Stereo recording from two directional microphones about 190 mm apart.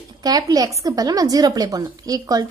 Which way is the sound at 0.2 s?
20° right (ahead or behind).